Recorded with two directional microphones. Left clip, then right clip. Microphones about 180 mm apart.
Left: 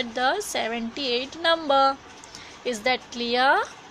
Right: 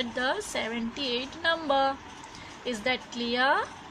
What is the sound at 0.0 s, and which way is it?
Speech, 45° left (ahead or behind).